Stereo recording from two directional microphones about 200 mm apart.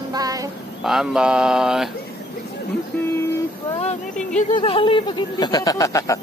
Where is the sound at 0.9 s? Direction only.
Centre (ahead or behind).